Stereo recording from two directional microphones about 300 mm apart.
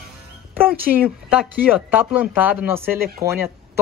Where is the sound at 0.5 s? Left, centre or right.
Centre.